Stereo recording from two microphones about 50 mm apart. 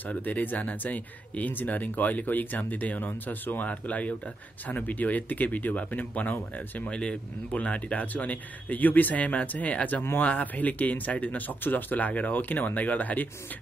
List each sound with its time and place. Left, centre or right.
0.0 s speech: left
6.9 s speech: left